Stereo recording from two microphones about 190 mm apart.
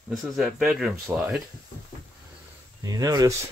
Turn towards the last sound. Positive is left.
turn(degrees=-20)  # may be behind; listen again after turning